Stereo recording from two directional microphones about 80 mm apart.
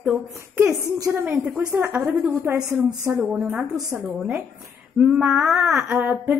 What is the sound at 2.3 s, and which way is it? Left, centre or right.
Speech, right.